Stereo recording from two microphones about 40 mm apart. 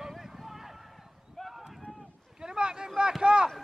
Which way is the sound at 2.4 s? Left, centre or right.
Centre.